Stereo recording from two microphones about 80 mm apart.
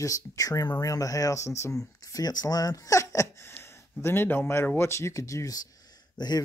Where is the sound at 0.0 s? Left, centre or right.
Left.